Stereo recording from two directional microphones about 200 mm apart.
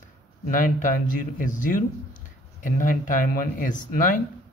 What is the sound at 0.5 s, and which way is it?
Speech, 40° left (ahead or behind).